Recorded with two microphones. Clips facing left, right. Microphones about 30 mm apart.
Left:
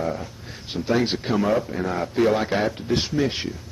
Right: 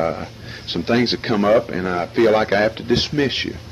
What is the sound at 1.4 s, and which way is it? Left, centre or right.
Speech, right.